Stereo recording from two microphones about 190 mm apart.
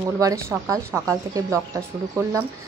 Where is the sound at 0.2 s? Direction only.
20° right (ahead or behind).